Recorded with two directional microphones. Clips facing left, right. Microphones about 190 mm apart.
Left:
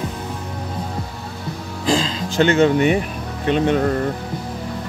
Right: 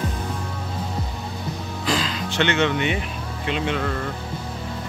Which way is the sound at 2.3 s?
40° left (ahead or behind).